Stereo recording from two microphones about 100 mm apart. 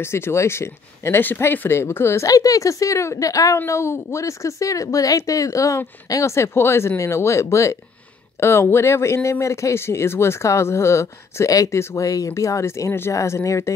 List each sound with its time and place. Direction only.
0.0 s a woman's voice: 25° left (ahead or behind)